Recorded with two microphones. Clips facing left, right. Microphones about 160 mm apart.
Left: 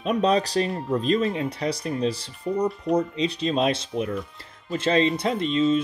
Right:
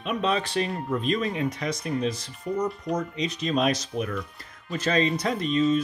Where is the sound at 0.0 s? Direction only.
35° left (ahead or behind).